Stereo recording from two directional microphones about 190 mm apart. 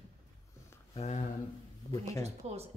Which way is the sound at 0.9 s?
35° left (ahead or behind).